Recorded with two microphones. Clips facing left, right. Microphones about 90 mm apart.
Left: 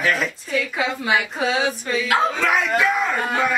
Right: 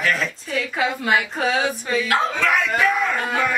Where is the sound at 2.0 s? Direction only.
15° left (ahead or behind).